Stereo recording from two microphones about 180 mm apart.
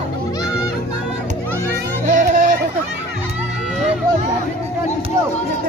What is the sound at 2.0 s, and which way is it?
Music, 45° right (ahead or behind).